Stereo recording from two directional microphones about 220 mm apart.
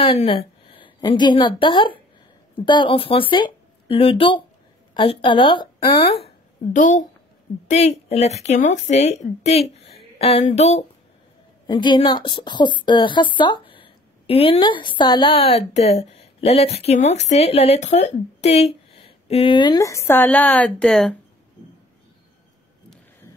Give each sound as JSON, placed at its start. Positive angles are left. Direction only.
{"t": 0.0, "sound": "a woman's voice", "side_deg": 25}